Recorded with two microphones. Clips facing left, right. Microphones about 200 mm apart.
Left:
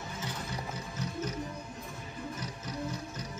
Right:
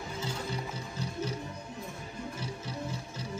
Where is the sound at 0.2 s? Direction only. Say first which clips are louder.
Right 4 dB; 30° right (ahead or behind).